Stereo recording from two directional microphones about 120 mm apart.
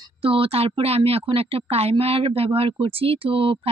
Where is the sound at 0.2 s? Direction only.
50° right (ahead or behind).